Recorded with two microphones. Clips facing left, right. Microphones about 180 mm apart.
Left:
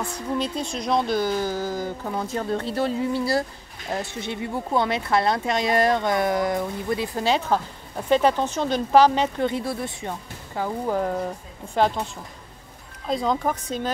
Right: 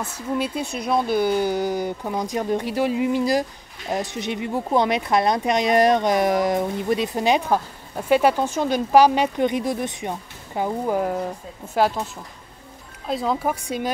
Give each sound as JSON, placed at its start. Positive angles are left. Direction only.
{"t": 0.0, "sound": "speech", "side_deg": -10}